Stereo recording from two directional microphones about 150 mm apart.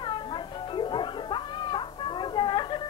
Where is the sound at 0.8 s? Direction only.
30° left (ahead or behind).